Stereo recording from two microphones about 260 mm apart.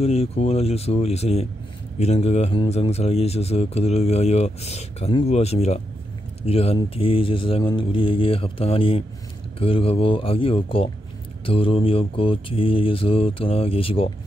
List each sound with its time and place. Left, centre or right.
0.0 s speech: left